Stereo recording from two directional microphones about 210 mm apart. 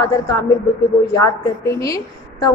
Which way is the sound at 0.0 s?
15° left (ahead or behind).